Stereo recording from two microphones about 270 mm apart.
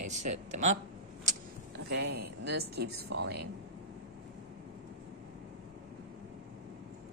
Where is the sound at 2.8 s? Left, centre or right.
Right.